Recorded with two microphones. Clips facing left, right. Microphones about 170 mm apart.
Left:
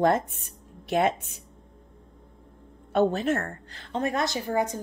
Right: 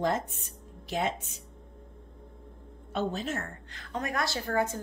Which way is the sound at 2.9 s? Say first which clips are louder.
Left 8 dB; 60° left (ahead or behind).